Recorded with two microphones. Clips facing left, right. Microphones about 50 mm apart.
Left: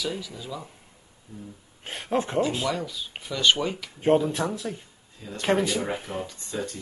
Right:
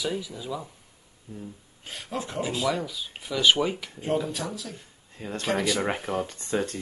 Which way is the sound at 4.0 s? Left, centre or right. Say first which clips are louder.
Left 7 dB; left.